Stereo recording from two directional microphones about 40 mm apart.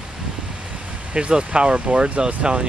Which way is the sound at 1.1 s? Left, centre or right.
Right.